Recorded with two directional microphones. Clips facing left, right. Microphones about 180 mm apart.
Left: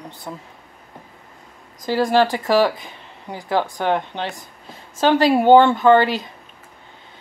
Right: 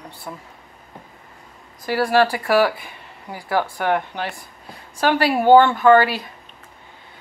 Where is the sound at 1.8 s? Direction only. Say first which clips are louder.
Left 1 dB; 20° left (ahead or behind).